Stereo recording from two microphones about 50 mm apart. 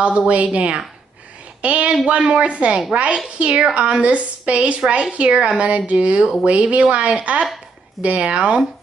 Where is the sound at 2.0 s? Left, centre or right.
Right.